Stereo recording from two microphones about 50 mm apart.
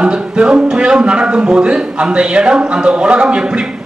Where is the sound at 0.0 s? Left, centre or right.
Centre.